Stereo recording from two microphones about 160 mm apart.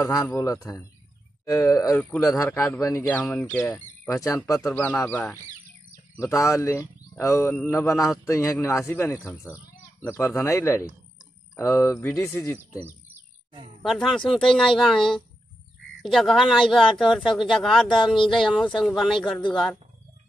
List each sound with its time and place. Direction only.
0.1 s a man's voice: 20° left (ahead or behind)
3.1 s a man's voice: 5° left (ahead or behind)
13.8 s speech: centre (ahead or behind)